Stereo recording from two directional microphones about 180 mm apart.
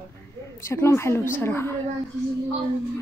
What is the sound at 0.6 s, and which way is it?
A woman's voice, 15° left (ahead or behind).